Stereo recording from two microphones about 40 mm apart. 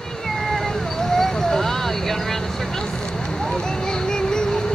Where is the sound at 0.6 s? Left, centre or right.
Centre.